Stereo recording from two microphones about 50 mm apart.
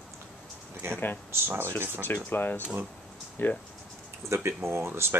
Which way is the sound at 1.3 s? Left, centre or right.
Right.